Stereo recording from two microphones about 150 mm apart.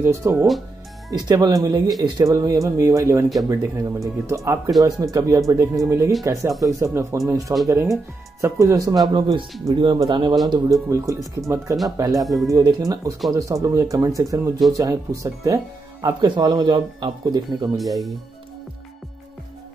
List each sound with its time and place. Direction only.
0.0 s speech: 20° right (ahead or behind)
17.7 s speech: centre (ahead or behind)